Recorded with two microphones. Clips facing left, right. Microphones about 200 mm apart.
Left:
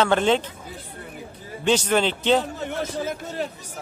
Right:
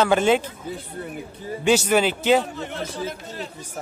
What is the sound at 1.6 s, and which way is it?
Speech, 10° right (ahead or behind).